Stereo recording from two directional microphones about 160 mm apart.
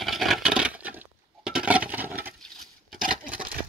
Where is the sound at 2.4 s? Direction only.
Centre (ahead or behind).